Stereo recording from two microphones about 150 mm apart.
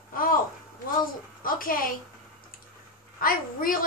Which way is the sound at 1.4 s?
70° left (ahead or behind).